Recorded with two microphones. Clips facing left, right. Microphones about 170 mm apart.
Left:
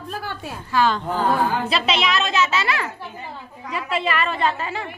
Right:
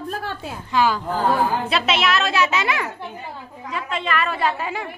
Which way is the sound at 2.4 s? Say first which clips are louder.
Right 1 dB; 15° right (ahead or behind).